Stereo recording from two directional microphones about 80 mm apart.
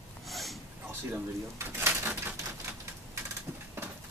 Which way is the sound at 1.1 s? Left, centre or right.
Right.